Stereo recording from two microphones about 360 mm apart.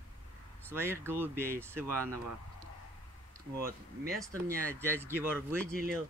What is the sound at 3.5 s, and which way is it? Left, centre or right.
Speech, right.